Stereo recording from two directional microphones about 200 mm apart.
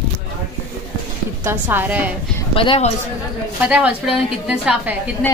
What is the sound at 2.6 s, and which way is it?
Speech, 30° left (ahead or behind).